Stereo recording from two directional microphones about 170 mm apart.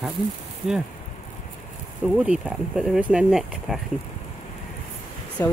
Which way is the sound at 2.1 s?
5° right (ahead or behind).